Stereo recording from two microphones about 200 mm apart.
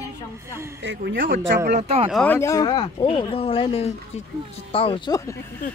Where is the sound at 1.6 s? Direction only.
35° right (ahead or behind).